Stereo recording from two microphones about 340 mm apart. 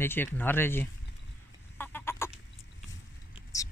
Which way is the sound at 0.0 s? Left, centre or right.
Centre.